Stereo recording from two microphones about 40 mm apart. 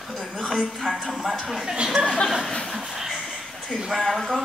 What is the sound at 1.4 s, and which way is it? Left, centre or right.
Speech, centre.